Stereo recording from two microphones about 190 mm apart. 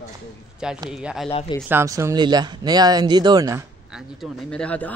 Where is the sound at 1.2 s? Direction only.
25° left (ahead or behind).